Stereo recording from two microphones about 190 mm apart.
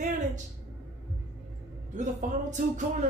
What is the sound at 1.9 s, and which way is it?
Speech, 40° right (ahead or behind).